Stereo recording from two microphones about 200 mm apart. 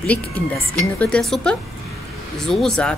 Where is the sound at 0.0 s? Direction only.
5° left (ahead or behind).